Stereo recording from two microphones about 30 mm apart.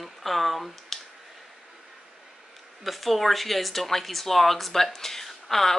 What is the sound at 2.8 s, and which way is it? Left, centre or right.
Speech, centre.